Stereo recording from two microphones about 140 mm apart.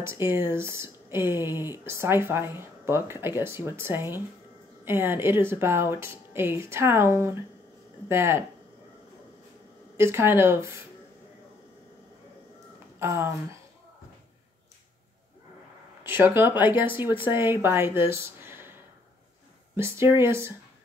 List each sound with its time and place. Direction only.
0.0 s speech: 20° right (ahead or behind)
9.9 s speech: 20° right (ahead or behind)
13.0 s speech: 15° right (ahead or behind)
16.0 s speech: 15° right (ahead or behind)
19.7 s speech: 20° right (ahead or behind)